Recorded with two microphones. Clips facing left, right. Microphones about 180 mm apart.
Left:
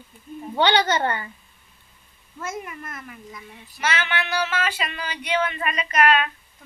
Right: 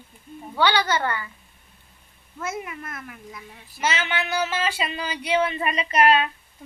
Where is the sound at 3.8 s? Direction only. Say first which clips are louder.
Even; 25° right (ahead or behind).